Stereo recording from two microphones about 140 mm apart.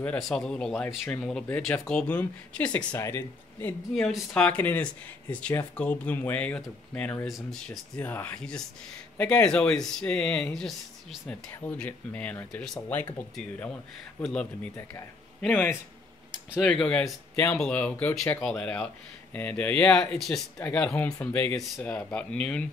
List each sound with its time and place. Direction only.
0.0 s speech: 5° left (ahead or behind)
0.8 s speech: 20° left (ahead or behind)
1.2 s speech: 5° left (ahead or behind)
3.9 s speech: 5° left (ahead or behind)
7.2 s speech: centre (ahead or behind)
14.2 s speech: 10° left (ahead or behind)